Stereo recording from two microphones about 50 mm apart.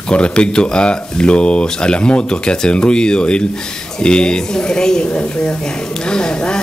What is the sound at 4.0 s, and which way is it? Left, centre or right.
Mantra, centre.